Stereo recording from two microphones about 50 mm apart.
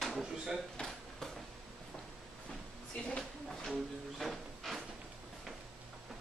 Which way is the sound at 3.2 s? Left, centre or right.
Centre.